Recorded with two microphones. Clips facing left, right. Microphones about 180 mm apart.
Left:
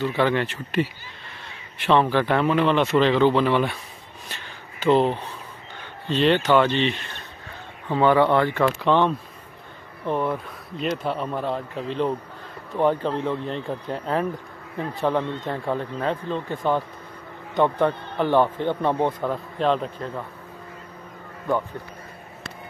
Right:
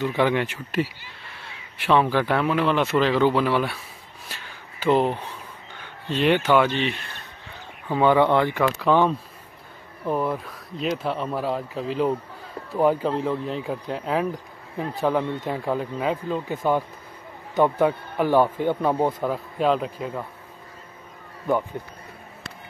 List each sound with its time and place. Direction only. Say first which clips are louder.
0.0 s speech: even; 10° right (ahead or behind)
4.3 s a sound: left 1 dB; 10° right (ahead or behind)
5.8 s speech: left 2 dB; 10° right (ahead or behind)
7.9 s speech: even; 15° right (ahead or behind)
8.6 s speech: even; centre (ahead or behind)